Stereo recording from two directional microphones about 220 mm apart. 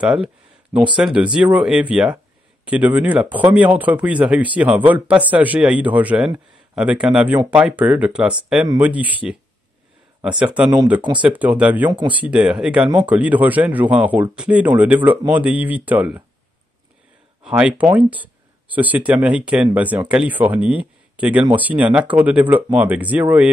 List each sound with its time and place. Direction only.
0.0 s a man's voice: 5° right (ahead or behind)
11.0 s speech: 20° right (ahead or behind)
11.2 s a man's voice: 5° right (ahead or behind)
17.4 s a man's voice: 5° right (ahead or behind)